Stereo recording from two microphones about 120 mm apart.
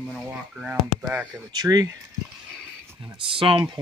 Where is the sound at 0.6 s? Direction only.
15° right (ahead or behind).